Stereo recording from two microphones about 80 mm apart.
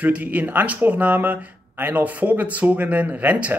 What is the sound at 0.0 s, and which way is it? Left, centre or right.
Speech, centre.